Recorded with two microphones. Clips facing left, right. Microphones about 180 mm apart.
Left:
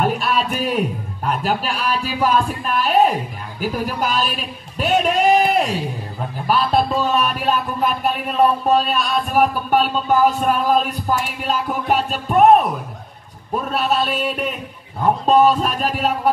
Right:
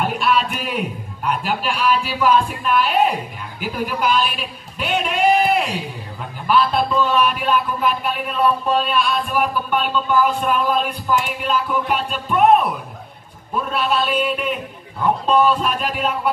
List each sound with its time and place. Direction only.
0.0 s a man's voice: 40° left (ahead or behind)